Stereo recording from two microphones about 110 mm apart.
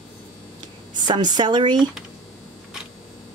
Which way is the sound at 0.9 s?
40° right (ahead or behind).